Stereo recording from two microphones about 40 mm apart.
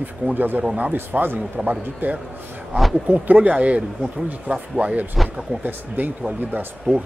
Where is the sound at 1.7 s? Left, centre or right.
Right.